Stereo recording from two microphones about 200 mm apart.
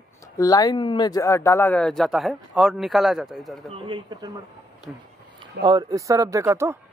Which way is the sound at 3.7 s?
25° right (ahead or behind).